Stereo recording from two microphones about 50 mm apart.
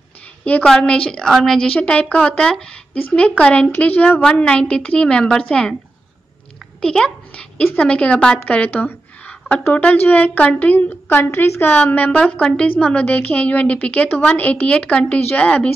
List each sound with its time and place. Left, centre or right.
0.5 s a woman's voice: left
0.8 s speech: left
1.3 s a woman's voice: centre
1.8 s speech: left
3.7 s a woman's voice: left
4.2 s a woman's voice: left
6.8 s a child's voice: centre
7.7 s a woman's voice: left
11.7 s a woman's voice: left
12.2 s a woman's voice: left